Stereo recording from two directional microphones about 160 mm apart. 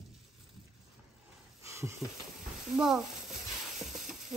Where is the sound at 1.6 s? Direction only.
15° right (ahead or behind).